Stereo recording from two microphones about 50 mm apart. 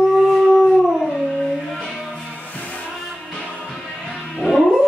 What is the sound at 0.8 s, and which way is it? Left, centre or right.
Howl, centre.